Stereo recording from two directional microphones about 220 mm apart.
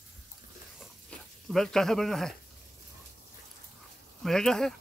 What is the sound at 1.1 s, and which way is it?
Speech, centre (ahead or behind).